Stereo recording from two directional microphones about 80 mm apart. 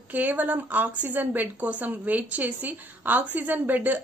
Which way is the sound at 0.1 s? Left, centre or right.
Centre.